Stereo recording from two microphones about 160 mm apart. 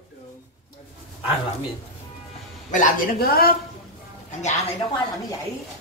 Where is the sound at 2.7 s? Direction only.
60° left (ahead or behind).